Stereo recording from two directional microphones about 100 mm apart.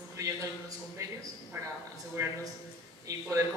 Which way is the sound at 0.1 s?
35° right (ahead or behind).